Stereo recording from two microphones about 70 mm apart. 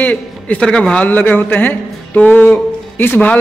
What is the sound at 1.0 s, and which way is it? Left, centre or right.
A man's voice, left.